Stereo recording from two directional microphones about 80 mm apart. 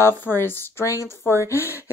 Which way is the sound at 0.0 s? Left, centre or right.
Left.